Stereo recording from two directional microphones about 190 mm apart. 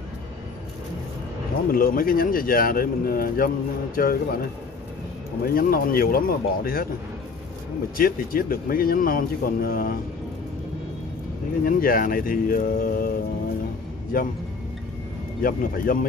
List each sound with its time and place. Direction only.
1.7 s speech: 50° left (ahead or behind)
5.4 s speech: 50° left (ahead or behind)
8.0 s speech: 50° left (ahead or behind)
11.6 s speech: 50° left (ahead or behind)
15.4 s speech: 50° left (ahead or behind)